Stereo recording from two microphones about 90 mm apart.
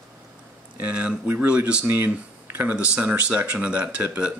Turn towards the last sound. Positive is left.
turn(degrees=-15)  # may be behind; listen again after turning